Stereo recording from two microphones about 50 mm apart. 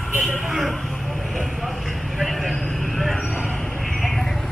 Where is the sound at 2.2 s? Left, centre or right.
Centre.